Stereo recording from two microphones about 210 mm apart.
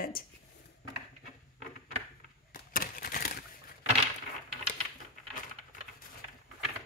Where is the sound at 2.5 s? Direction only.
40° left (ahead or behind).